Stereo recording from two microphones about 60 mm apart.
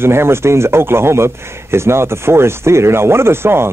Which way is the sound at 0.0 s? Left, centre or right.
Right.